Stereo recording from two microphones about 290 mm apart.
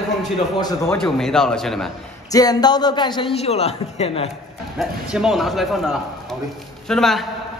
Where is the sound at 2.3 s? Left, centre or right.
Centre.